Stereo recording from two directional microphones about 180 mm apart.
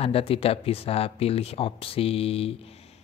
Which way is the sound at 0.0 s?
30° left (ahead or behind).